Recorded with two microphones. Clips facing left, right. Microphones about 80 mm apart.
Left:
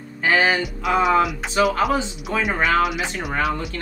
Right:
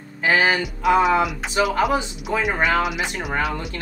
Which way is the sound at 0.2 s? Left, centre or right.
Centre.